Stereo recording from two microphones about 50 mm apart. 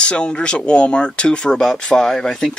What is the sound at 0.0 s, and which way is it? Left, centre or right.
Speech, centre.